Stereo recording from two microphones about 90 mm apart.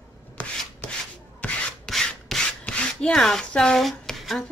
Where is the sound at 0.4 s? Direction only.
15° left (ahead or behind).